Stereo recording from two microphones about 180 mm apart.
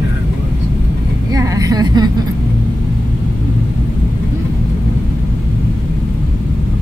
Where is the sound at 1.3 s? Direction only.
20° right (ahead or behind).